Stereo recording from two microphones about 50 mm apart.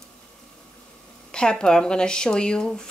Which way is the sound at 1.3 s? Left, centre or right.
Centre.